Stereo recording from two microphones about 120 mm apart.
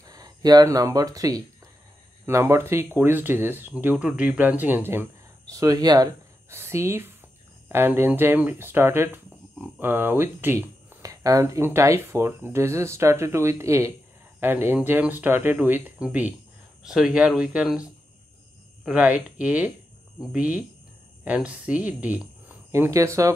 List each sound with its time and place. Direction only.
0.0 s speech: 30° right (ahead or behind)
5.5 s speech: 30° right (ahead or behind)
6.5 s speech: 20° right (ahead or behind)
18.9 s speech: 10° right (ahead or behind)
22.7 s speech: 25° right (ahead or behind)